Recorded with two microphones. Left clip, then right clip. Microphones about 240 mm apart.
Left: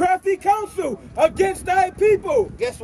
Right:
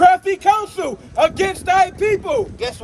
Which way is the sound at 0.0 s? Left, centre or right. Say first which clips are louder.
Right 6 dB; centre.